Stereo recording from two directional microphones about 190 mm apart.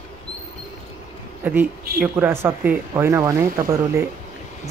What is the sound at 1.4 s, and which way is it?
Speech, 10° right (ahead or behind).